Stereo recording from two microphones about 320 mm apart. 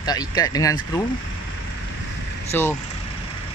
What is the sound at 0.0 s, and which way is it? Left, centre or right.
Speech, centre.